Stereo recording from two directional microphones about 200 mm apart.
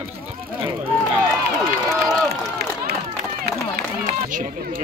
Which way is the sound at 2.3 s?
55° right (ahead or behind).